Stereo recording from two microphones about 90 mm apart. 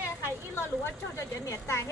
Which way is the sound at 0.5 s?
25° left (ahead or behind).